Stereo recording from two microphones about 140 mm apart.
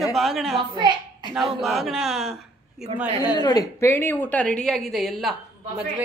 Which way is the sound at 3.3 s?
30° left (ahead or behind).